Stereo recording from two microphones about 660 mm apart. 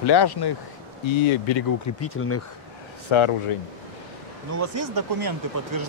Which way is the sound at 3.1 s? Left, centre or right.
Left.